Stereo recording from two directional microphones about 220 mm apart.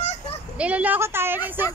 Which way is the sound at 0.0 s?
30° left (ahead or behind).